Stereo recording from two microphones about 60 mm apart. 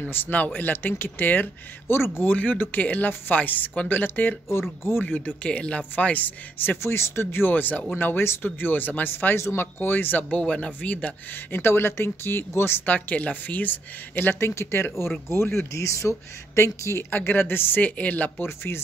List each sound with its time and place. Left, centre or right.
0.1 s speech: left
2.3 s speech: left
5.0 s speech: left
5.4 s speech: centre
6.8 s speech: left
10.3 s speech: left
11.5 s speech: left
12.8 s speech: left
14.5 s speech: left
15.7 s speech: left
17.1 s speech: left